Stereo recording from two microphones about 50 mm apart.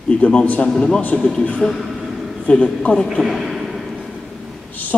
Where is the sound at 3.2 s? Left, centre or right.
Centre.